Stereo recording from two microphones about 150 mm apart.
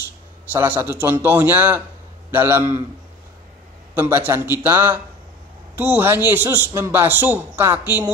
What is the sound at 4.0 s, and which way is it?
A man's voice, 15° right (ahead or behind).